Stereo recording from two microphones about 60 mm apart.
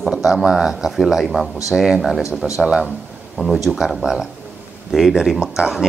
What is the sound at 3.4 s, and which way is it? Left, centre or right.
A man's voice, centre.